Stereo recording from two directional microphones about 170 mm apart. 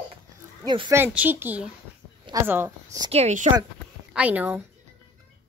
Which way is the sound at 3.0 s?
40° right (ahead or behind).